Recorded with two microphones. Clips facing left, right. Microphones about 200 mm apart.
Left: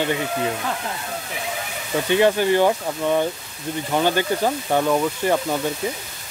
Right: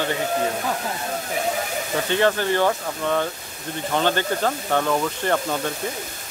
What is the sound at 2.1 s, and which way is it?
Speech, 15° left (ahead or behind).